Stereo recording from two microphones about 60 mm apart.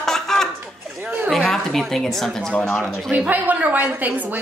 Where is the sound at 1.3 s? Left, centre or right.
Centre.